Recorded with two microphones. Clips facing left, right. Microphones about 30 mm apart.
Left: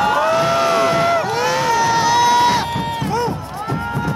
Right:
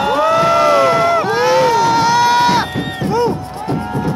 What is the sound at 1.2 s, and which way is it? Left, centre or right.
Run, right.